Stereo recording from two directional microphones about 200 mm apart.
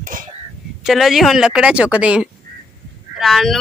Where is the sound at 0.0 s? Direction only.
40° right (ahead or behind).